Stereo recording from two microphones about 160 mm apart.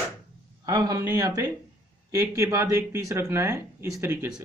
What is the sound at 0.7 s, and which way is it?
Speech, 20° right (ahead or behind).